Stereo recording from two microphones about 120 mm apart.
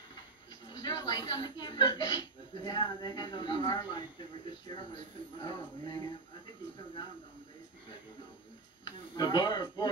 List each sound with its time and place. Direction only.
0.7 s a woman's voice: 30° left (ahead or behind)
9.1 s speech: 35° left (ahead or behind)